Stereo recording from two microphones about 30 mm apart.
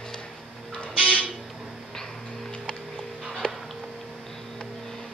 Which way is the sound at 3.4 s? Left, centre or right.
Left.